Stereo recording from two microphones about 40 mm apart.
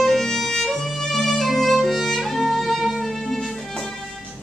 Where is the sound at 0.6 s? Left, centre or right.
Centre.